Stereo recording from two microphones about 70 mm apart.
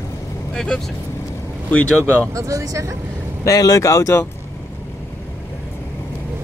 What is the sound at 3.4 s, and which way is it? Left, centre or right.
Speech, left.